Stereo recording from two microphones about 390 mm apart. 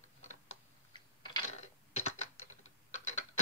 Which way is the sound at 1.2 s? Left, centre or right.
Centre.